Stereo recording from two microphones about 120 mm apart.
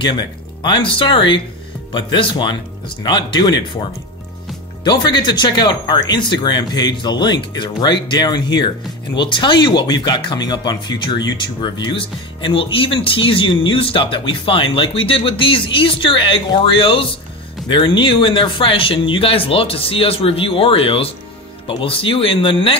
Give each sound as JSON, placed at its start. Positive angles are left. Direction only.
{"t": 0.0, "sound": "speech", "side_deg": 40}
{"t": 4.8, "sound": "speech", "side_deg": 40}